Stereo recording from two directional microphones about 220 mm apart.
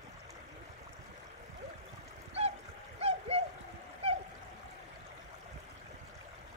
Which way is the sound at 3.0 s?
25° right (ahead or behind).